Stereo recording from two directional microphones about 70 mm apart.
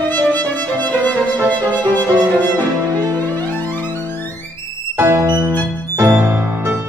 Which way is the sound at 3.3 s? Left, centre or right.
Left.